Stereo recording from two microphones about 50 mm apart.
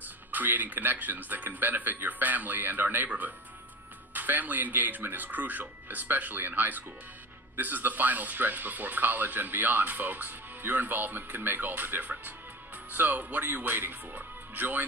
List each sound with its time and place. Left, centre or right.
0.3 s speech: right